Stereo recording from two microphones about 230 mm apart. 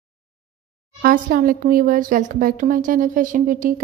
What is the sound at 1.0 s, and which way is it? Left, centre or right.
A woman's voice, right.